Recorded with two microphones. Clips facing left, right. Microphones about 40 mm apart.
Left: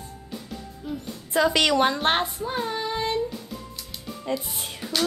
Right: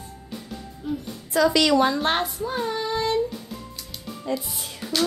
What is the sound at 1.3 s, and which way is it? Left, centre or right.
Speech, left.